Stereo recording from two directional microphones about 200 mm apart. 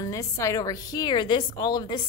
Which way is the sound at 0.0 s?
15° left (ahead or behind).